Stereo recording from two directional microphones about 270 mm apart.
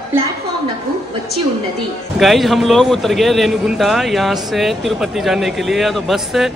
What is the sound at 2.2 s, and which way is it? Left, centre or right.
A man's voice, centre.